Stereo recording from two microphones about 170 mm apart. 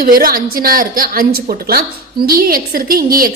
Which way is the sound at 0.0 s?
55° right (ahead or behind).